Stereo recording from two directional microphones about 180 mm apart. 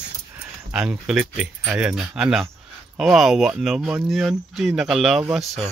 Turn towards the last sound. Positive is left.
turn(degrees=-5)  # may be behind; listen again after turning